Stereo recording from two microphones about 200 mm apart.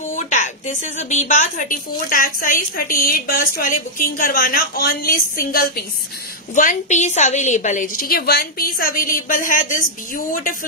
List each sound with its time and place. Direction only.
0.1 s a woman's voice: 40° left (ahead or behind)